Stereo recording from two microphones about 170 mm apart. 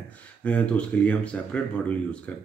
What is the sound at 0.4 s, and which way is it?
Speech, 5° left (ahead or behind).